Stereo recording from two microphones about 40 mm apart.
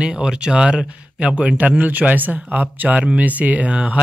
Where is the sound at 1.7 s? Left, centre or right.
Right.